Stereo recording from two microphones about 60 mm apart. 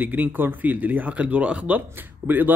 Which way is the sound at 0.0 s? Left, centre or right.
Right.